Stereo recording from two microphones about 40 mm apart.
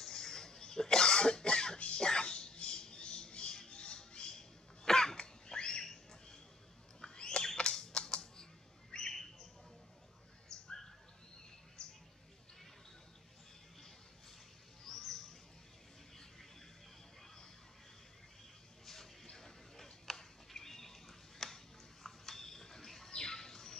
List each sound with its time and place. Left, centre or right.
0.0 s cough: centre
2.0 s a sound: left
3.5 s cough: left
5.1 s a sound: left
8.9 s bird: left
11.8 s mouse: centre
14.9 s bird: centre
19.3 s a sound: centre
23.1 s bird: centre